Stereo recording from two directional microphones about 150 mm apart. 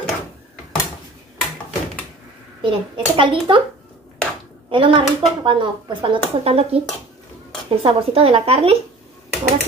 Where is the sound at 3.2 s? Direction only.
35° right (ahead or behind).